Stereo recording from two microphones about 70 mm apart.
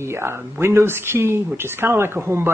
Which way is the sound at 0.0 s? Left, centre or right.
Right.